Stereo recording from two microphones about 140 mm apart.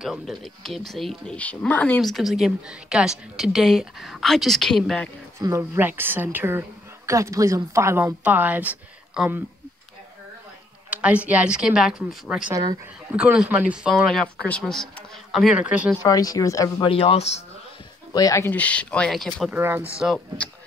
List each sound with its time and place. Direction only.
0.0 s a woman's voice: centre (ahead or behind)
2.0 s a woman's voice: centre (ahead or behind)
5.4 s a woman's voice: 20° right (ahead or behind)
10.9 s a woman's voice: 10° right (ahead or behind)
16.0 s speech: 25° left (ahead or behind)
16.8 s speech: 40° left (ahead or behind)
18.1 s speech: 25° left (ahead or behind); by 19.5 s 5° left (ahead or behind)
19.5 s a woman's voice: 15° right (ahead or behind)